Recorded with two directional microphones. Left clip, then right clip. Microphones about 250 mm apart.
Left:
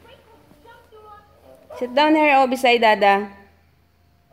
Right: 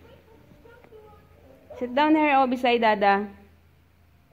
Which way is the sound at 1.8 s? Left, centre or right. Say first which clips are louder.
Left 5 dB; centre.